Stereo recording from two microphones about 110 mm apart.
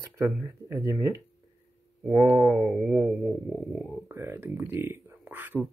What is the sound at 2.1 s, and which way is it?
Speech, 30° right (ahead or behind).